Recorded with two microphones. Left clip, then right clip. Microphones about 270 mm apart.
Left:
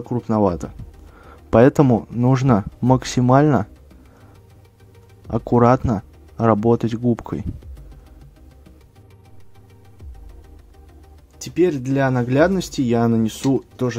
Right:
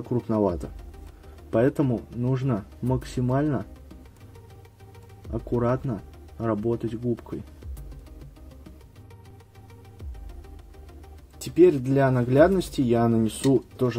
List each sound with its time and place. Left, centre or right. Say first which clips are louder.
0.1 s speech: left 5 dB; left
5.3 s speech: left 11 dB; left
11.4 s speech: even; centre